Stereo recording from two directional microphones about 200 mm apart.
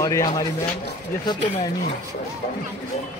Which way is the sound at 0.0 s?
20° left (ahead or behind).